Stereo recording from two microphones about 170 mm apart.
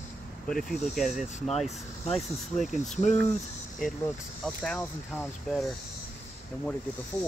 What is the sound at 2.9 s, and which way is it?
Speech, 45° left (ahead or behind).